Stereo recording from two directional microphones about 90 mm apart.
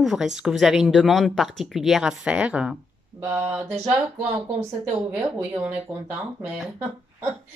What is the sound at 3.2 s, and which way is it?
Mantra, 20° right (ahead or behind).